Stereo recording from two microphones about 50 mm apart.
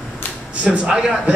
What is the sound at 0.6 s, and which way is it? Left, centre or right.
Speech, right.